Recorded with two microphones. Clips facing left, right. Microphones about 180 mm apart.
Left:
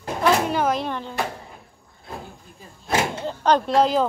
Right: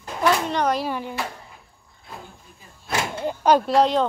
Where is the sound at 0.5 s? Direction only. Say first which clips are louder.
Even; centre (ahead or behind).